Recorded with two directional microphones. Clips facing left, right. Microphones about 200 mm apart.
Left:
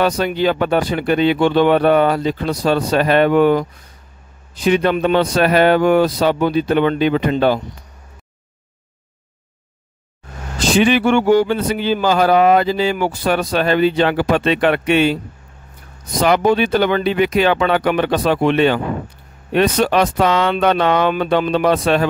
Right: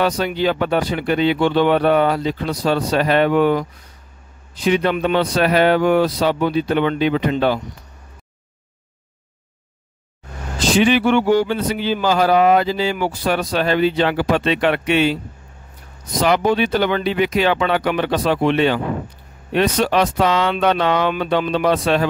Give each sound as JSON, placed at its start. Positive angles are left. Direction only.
{"t": 0.0, "sound": "speech", "side_deg": 50}
{"t": 4.6, "sound": "speech", "side_deg": 50}
{"t": 10.8, "sound": "speech", "side_deg": 50}
{"t": 16.2, "sound": "speech", "side_deg": 50}